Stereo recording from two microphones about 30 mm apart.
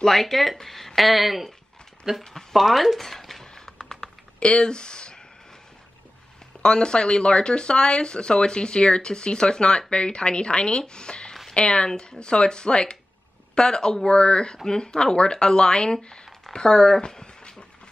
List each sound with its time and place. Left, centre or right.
0.0 s speech: centre
2.1 s speech: right
2.5 s speech: centre
3.5 s a sound: left
4.4 s speech: left
6.6 s speech: left
16.5 s a sound: left